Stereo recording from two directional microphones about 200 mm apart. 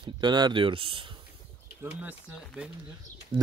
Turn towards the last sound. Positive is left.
turn(degrees=-25)  # may be behind; listen again after turning